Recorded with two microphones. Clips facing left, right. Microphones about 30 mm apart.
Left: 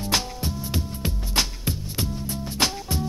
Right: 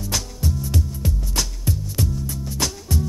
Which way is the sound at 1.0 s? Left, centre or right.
Left.